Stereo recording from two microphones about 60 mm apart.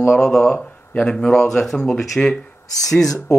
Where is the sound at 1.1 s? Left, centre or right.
Centre.